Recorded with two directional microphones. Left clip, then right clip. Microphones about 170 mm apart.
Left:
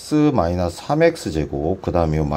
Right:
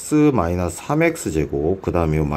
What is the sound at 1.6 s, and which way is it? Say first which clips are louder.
Speech: left 3 dB; 10° left (ahead or behind).